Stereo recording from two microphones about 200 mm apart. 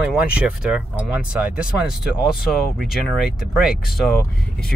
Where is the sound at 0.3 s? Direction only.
5° right (ahead or behind).